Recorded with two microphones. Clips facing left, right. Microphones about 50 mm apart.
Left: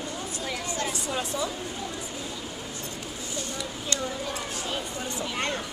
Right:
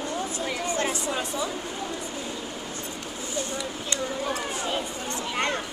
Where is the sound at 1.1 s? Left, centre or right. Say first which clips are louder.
Right 1 dB; centre.